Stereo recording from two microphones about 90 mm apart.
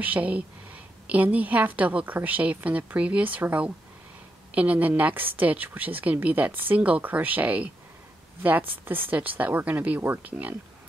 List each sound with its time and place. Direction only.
0.0 s a woman's voice: 15° right (ahead or behind)